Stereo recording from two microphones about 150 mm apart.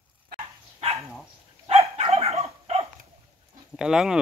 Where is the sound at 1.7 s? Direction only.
40° right (ahead or behind).